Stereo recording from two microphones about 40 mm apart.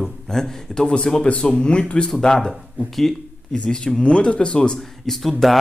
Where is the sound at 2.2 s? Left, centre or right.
Centre.